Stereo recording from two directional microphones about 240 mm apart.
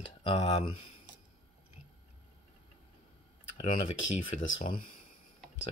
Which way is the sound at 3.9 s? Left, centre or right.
Left.